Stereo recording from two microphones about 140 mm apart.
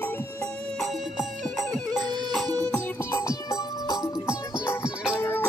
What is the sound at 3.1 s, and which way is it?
Music, 20° left (ahead or behind).